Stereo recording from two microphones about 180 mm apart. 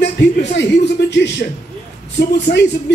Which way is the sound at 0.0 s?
70° left (ahead or behind).